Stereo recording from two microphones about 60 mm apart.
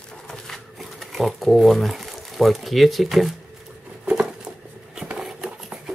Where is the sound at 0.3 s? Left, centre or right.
Centre.